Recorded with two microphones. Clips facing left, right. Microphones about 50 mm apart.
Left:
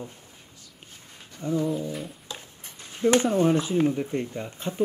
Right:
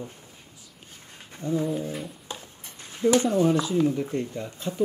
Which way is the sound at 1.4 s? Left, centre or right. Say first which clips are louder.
Even; left.